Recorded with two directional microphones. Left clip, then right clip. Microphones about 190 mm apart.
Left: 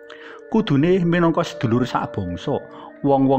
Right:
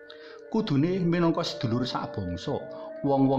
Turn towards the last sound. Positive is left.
turn(degrees=25)  # may be behind; listen again after turning